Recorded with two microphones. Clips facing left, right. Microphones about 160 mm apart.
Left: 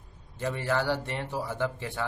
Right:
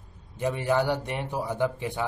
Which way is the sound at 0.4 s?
15° right (ahead or behind).